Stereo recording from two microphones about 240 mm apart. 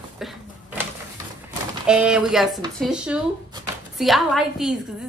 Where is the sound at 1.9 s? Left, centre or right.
Centre.